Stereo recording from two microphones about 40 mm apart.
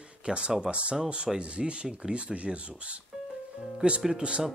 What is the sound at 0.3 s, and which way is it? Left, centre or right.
Speech, right.